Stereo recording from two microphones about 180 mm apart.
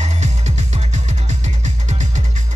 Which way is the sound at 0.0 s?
40° right (ahead or behind).